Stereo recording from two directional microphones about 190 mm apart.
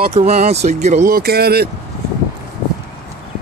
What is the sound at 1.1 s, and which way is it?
Speech, 55° right (ahead or behind).